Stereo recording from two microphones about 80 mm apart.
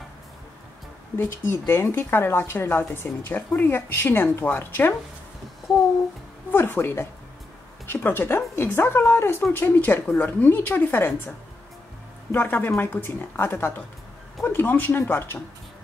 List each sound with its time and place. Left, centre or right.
1.1 s a woman's voice: left
6.5 s speech: left
7.8 s a sound: left
8.7 s a woman's voice: left